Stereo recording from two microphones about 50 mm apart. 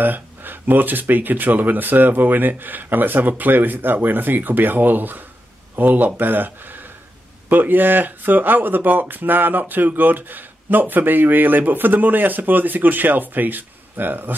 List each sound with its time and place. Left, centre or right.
0.0 s speech: right